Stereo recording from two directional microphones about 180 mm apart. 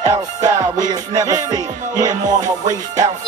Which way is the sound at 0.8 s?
20° right (ahead or behind).